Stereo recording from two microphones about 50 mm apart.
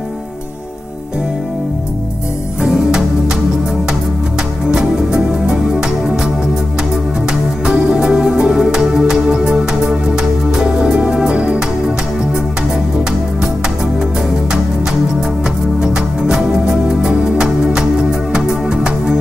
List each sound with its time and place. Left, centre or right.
4.6 s music: centre
7.6 s music: centre
15.8 s music: centre